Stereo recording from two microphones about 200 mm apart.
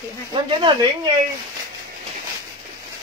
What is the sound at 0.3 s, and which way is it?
Speech, 25° right (ahead or behind).